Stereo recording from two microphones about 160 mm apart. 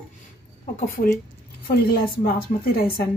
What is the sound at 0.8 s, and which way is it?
Speech, 65° left (ahead or behind).